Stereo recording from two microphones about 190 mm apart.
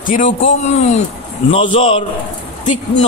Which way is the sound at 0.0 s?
45° left (ahead or behind).